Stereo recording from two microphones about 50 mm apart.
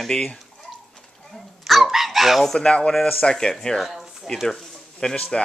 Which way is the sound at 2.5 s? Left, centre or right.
Centre.